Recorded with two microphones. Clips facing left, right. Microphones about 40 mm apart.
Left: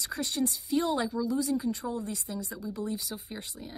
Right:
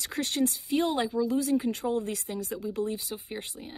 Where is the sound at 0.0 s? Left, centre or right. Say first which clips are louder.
Right 3 dB; right.